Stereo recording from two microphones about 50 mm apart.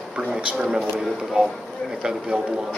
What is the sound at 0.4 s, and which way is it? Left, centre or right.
A man's voice, centre.